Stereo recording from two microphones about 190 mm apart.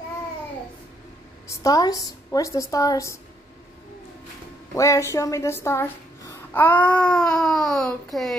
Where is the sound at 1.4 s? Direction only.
20° left (ahead or behind).